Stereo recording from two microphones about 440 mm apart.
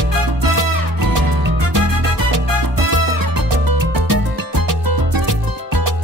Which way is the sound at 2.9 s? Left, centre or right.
Right.